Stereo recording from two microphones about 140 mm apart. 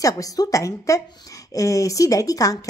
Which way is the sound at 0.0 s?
25° left (ahead or behind).